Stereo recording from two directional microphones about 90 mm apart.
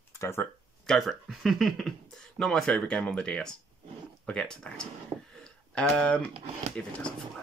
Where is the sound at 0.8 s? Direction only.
Centre (ahead or behind).